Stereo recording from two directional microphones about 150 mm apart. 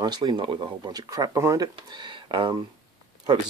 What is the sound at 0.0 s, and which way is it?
Speech, 30° right (ahead or behind).